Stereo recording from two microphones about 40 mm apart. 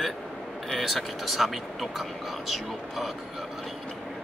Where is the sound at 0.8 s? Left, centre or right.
Centre.